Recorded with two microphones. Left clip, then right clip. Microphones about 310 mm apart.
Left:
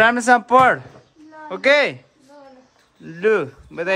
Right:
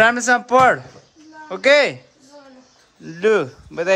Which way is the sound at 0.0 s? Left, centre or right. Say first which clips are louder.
Left 1 dB; centre.